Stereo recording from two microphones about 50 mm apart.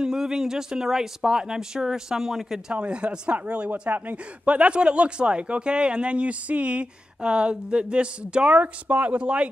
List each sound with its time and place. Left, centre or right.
0.0 s speech: centre
2.7 s speech: right